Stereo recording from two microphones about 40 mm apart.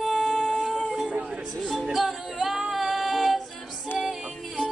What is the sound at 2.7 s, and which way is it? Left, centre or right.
Female singing, centre.